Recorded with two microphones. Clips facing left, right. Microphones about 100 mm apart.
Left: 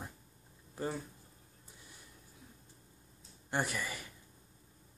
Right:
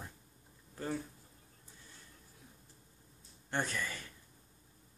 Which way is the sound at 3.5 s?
10° left (ahead or behind).